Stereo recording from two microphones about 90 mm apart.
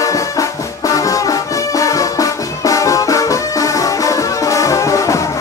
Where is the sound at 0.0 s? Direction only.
35° left (ahead or behind).